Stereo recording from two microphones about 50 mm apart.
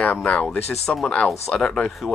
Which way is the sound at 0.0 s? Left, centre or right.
Left.